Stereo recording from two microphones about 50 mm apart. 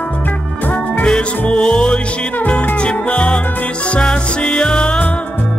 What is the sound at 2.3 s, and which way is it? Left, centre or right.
Music, left.